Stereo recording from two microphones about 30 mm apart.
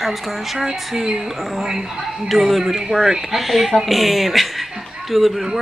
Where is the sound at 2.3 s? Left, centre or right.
Centre.